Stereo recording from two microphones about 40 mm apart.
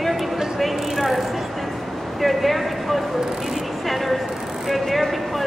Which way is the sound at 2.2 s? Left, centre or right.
Centre.